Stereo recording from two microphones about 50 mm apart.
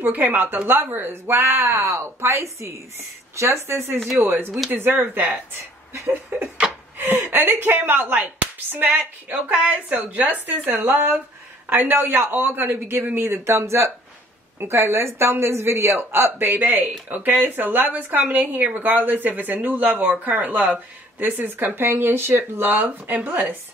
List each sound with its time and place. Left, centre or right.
0.0 s a man's voice: right
7.0 s a sound: right
7.3 s a man's voice: right
16.7 s speech: right
21.5 s a man's voice: right